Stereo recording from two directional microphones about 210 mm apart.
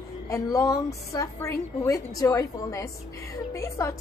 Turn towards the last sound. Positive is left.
turn(degrees=15)  # may be behind; listen again after turning